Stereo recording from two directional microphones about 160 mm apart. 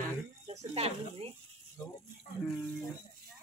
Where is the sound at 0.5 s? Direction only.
40° right (ahead or behind).